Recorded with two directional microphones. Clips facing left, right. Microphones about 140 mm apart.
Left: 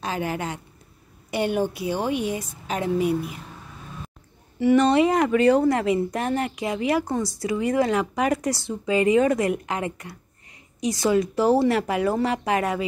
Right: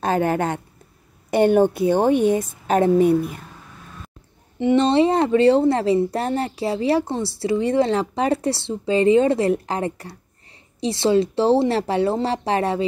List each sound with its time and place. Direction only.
0.0 s a woman's voice: 50° right (ahead or behind)
4.6 s a woman's voice: 25° right (ahead or behind)